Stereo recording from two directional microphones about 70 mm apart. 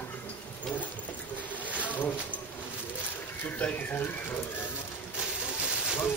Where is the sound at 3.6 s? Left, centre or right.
Left.